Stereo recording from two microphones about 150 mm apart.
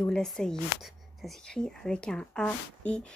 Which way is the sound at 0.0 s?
5° left (ahead or behind).